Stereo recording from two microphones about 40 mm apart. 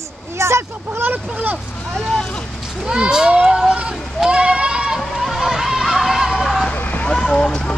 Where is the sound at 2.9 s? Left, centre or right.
Right.